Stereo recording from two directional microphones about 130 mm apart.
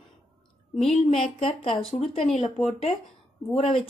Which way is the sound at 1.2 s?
45° left (ahead or behind).